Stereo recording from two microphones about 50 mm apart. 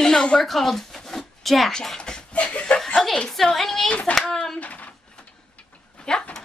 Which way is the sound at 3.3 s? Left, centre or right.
Centre.